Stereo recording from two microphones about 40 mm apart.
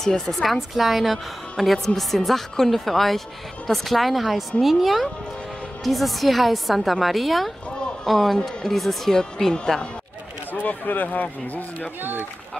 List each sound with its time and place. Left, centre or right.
0.3 s a woman's voice: centre
10.5 s speech: left
12.0 s speech: right